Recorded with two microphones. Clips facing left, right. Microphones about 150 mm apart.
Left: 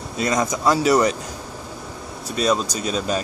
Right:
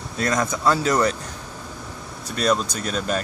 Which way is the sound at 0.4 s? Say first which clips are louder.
Left 2 dB; 15° left (ahead or behind).